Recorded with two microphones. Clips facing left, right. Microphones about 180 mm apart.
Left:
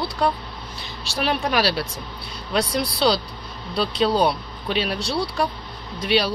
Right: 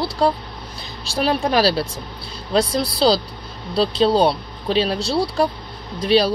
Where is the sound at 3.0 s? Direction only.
35° right (ahead or behind).